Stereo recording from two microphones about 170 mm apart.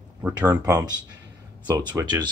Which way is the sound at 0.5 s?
20° right (ahead or behind).